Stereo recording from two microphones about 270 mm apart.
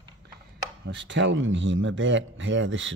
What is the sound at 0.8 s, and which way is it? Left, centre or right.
Speech, right.